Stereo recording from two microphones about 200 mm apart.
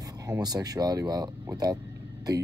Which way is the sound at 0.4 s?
20° right (ahead or behind).